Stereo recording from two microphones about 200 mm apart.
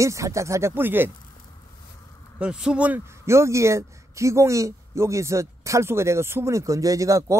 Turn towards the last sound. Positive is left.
turn(degrees=-15)  # may be behind; listen again after turning